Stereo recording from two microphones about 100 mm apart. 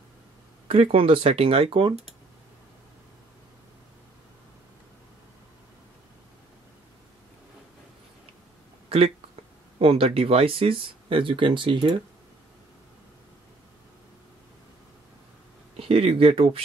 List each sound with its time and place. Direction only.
0.7 s speech: 65° right (ahead or behind)
8.8 s a sound: 80° right
9.8 s speech: 75° right (ahead or behind); by 12.0 s 50° right (ahead or behind)
15.7 s speech: 85° right